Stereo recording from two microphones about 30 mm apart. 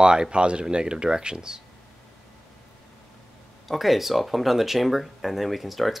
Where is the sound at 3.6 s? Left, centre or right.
Centre.